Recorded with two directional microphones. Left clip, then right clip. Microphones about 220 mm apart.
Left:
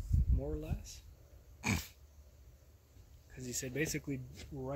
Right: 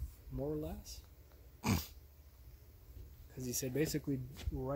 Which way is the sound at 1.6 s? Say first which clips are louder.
Left 1 dB; 35° right (ahead or behind).